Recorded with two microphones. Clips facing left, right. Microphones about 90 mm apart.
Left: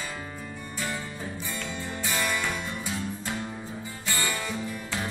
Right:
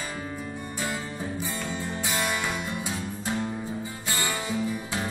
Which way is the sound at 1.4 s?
20° right (ahead or behind).